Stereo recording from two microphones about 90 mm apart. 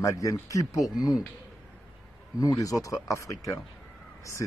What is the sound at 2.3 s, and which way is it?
Speech, 40° left (ahead or behind).